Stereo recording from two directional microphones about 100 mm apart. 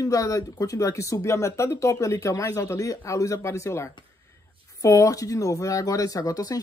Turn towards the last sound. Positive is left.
turn(degrees=35)  # may be behind; listen again after turning